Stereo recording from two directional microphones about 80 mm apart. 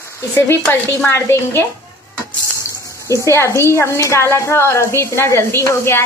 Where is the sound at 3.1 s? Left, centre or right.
Left.